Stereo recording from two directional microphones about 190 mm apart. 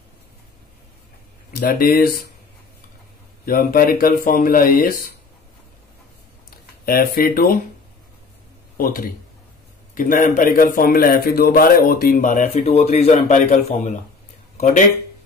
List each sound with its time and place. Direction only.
1.5 s a man's voice: 50° left (ahead or behind)
3.4 s a man's voice: 50° left (ahead or behind)
6.9 s a man's voice: 50° left (ahead or behind)
8.7 s a man's voice: 50° left (ahead or behind)